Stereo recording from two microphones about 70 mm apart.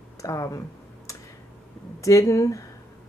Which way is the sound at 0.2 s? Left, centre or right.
Left.